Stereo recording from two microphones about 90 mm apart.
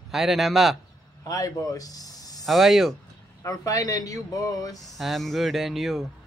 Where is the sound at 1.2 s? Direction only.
40° left (ahead or behind).